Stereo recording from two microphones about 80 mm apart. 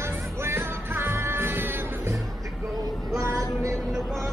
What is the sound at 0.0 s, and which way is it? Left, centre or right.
Music, right.